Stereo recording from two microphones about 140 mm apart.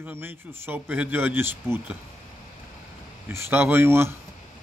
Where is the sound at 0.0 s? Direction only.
15° right (ahead or behind).